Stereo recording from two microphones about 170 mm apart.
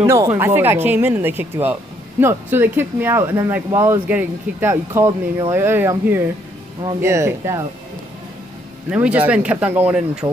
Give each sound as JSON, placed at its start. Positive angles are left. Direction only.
{"t": 0.0, "sound": "speech", "side_deg": -15}
{"t": 8.9, "sound": "speech", "side_deg": -5}